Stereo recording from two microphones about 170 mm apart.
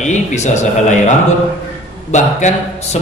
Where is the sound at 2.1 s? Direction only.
40° left (ahead or behind).